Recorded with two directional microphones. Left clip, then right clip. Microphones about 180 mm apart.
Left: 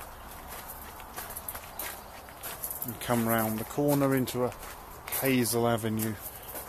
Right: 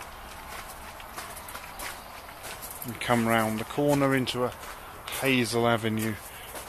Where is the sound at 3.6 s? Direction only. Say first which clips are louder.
Right 2 dB; 5° right (ahead or behind).